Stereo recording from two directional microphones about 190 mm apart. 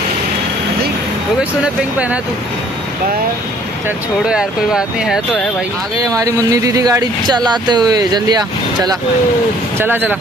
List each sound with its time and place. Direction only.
4.3 s speech: 5° right (ahead or behind)
5.9 s speech: 20° right (ahead or behind)
9.8 s speech: 10° right (ahead or behind)